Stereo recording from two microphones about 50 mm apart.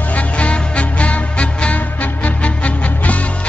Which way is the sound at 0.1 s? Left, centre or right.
Left.